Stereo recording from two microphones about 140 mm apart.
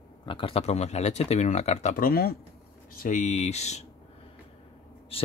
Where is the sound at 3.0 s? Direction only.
65° left (ahead or behind).